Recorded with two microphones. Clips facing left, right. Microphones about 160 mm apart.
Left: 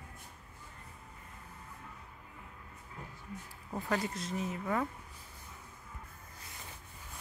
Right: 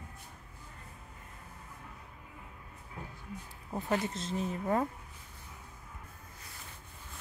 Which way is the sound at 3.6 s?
20° right (ahead or behind).